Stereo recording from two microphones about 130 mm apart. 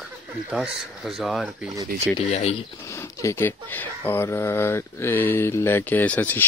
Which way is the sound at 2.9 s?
25° left (ahead or behind).